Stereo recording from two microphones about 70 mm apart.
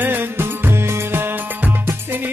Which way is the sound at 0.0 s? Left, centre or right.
Right.